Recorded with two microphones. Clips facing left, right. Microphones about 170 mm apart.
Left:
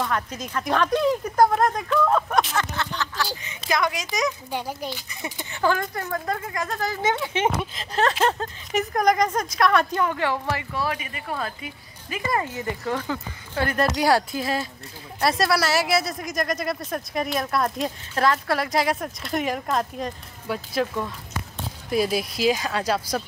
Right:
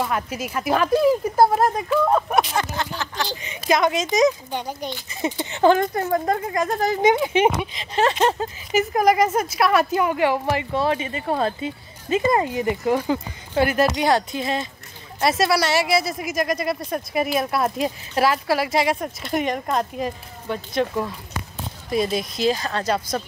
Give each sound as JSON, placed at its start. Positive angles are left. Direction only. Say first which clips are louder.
{"t": 0.0, "sound": "speech", "louder": "right 2 dB", "side_deg": -10}
{"t": 4.5, "sound": "a woman's voice", "louder": "right 1 dB", "side_deg": 5}
{"t": 5.2, "sound": "speech", "louder": "right 7 dB", "side_deg": -20}
{"t": 7.7, "sound": "speech", "louder": "right 2 dB", "side_deg": 0}
{"t": 13.7, "sound": "a woman's voice", "louder": "left 3 dB", "side_deg": 0}
{"t": 21.9, "sound": "speech", "louder": "right 1 dB", "side_deg": 5}